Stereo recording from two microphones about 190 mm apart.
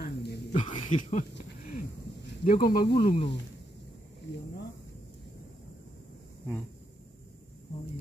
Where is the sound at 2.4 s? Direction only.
50° left (ahead or behind).